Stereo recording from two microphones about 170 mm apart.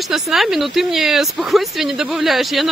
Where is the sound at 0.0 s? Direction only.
Centre (ahead or behind).